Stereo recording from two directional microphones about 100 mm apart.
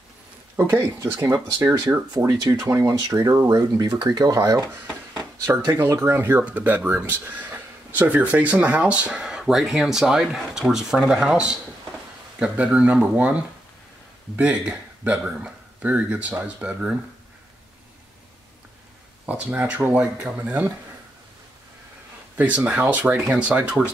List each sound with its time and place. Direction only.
0.6 s speech: 25° right (ahead or behind)
14.4 s speech: 15° right (ahead or behind)
19.2 s speech: 15° right (ahead or behind)
22.4 s speech: 15° right (ahead or behind)